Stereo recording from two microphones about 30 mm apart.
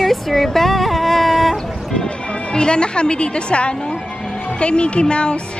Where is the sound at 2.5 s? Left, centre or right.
Left.